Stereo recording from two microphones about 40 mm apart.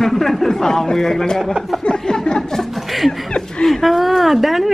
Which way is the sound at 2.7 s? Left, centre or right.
Centre.